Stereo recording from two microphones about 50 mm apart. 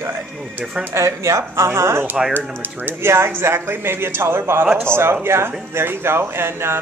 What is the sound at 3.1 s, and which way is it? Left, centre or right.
A man's voice, right.